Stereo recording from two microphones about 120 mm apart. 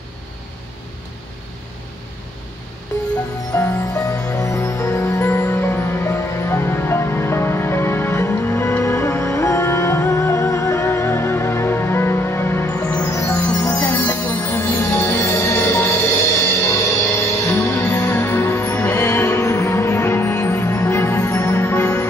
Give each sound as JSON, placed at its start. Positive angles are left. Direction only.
{"t": 3.5, "sound": "music", "side_deg": 25}
{"t": 13.8, "sound": "music", "side_deg": 15}